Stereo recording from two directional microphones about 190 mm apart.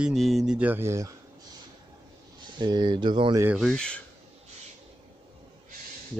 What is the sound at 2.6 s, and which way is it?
Speech, 25° right (ahead or behind).